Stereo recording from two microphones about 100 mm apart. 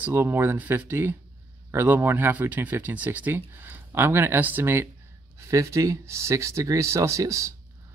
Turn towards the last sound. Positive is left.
turn(degrees=-30)  # may be behind; listen again after turning